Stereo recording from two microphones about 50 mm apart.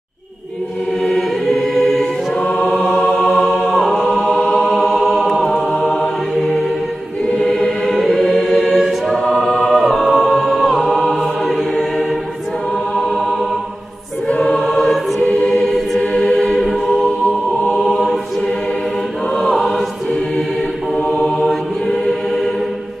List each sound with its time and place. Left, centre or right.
1.0 s choir: centre
2.5 s music: centre
7.4 s choir: centre
14.4 s choir: centre
16.1 s music: centre
19.3 s choir: centre
21.1 s mantra: centre